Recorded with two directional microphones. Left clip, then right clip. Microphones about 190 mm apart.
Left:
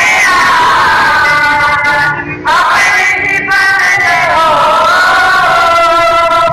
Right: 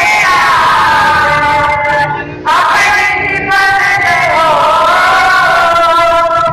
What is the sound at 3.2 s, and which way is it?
Chant, 30° right (ahead or behind).